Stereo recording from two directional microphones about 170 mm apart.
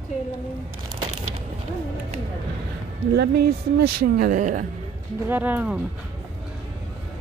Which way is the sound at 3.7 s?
60° right (ahead or behind).